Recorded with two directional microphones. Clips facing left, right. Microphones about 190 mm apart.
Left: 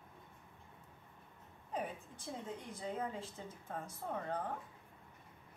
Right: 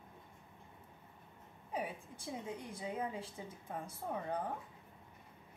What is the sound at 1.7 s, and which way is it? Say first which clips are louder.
A woman's voice: right 1 dB; 10° right (ahead or behind).